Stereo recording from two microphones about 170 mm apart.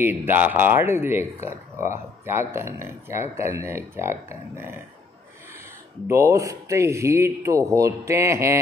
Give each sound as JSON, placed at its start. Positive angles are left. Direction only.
{"t": 0.0, "sound": "speech", "side_deg": -15}
{"t": 6.0, "sound": "speech", "side_deg": -15}